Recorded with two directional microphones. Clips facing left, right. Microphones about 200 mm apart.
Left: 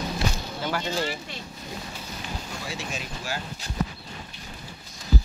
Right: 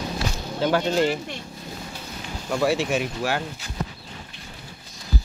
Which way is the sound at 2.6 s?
65° right (ahead or behind).